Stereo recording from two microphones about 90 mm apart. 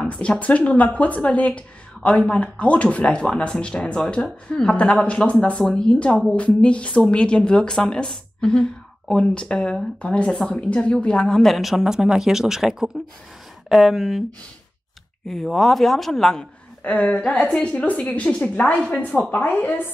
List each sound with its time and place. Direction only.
0.0 s speech: 15° left (ahead or behind)
15.2 s speech: 5° left (ahead or behind)
16.8 s speech: 15° left (ahead or behind)